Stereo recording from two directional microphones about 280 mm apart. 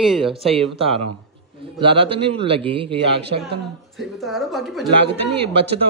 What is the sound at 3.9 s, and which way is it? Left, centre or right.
Speech, centre.